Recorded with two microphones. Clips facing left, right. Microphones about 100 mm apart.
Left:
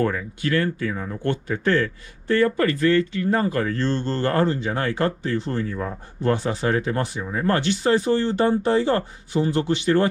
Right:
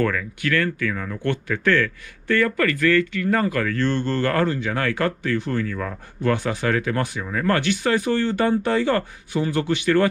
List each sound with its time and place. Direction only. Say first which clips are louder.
0.0 s speech: even; 30° left (ahead or behind)